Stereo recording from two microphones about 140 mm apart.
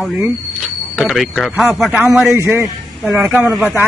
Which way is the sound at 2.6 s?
Centre (ahead or behind).